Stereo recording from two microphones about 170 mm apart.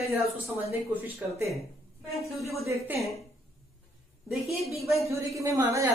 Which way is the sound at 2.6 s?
15° right (ahead or behind).